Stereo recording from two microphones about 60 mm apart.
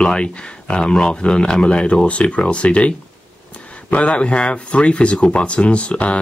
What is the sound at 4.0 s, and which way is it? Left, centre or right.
Speech, centre.